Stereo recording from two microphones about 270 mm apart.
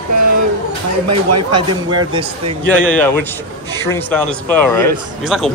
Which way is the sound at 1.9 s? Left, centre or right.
Centre.